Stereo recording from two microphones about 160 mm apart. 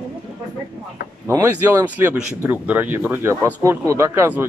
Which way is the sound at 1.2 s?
15° right (ahead or behind).